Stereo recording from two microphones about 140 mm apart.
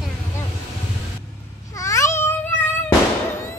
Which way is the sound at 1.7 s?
20° left (ahead or behind).